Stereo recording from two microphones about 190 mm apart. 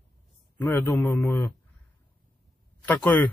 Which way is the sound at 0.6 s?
15° left (ahead or behind).